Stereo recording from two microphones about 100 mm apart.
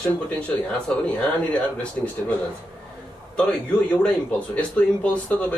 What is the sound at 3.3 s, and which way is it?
Speech, 10° left (ahead or behind).